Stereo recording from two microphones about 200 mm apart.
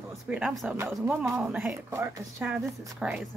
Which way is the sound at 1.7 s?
15° right (ahead or behind).